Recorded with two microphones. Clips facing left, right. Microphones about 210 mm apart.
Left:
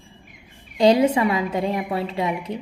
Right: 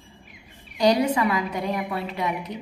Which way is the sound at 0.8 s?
25° left (ahead or behind).